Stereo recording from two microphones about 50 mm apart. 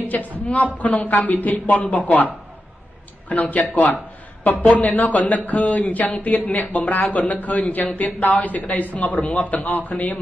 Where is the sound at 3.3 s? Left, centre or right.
Left.